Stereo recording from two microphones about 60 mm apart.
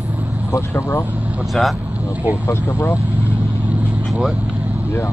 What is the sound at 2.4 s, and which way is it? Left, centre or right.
Speech, left.